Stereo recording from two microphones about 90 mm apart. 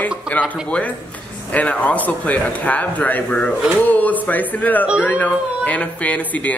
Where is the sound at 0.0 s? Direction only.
15° left (ahead or behind).